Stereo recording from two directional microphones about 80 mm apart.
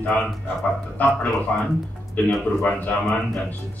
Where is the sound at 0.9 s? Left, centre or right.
Centre.